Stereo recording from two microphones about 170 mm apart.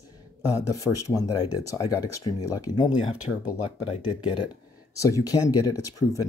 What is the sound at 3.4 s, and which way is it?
Speech, 40° left (ahead or behind).